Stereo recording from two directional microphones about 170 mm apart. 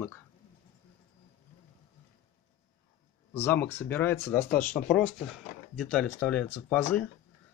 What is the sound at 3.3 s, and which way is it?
Speech, 10° left (ahead or behind).